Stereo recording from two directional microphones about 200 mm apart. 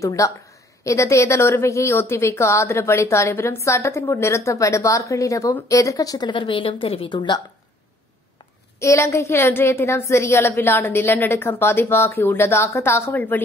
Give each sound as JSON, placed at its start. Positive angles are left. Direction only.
{"t": 0.0, "sound": "a woman's voice", "side_deg": 15}
{"t": 8.7, "sound": "a woman's voice", "side_deg": 15}